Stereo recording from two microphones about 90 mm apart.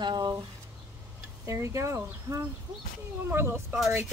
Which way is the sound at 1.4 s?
35° right (ahead or behind).